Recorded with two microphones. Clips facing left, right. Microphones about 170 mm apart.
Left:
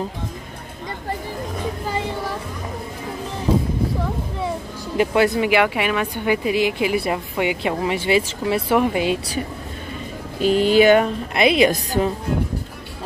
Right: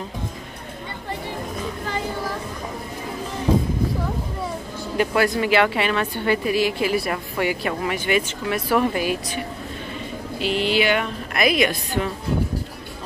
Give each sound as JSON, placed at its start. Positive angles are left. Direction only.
{"t": 5.1, "sound": "a woman's voice", "side_deg": 20}
{"t": 8.7, "sound": "a woman's voice", "side_deg": 15}
{"t": 10.4, "sound": "speech", "side_deg": 45}
{"t": 11.3, "sound": "a woman's voice", "side_deg": 25}
{"t": 11.7, "sound": "a woman's voice", "side_deg": 40}